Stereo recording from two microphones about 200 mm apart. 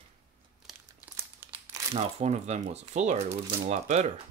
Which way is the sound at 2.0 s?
30° right (ahead or behind).